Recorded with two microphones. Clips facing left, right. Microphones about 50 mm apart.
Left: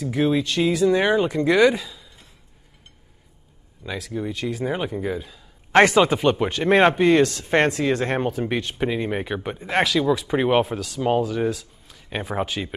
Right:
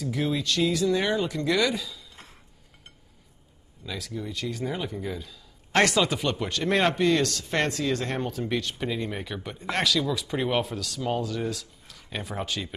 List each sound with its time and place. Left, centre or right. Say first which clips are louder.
0.0 s a man's voice: left 7 dB; centre
4.1 s a man's voice: left 6 dB; left